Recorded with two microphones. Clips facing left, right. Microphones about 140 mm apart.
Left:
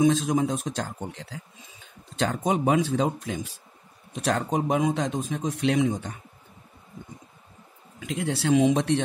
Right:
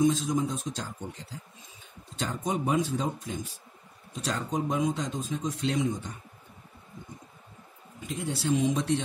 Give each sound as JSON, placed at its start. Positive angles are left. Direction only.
{"t": 0.0, "sound": "speech", "side_deg": 70}
{"t": 4.1, "sound": "speech", "side_deg": 65}
{"t": 8.0, "sound": "speech", "side_deg": 80}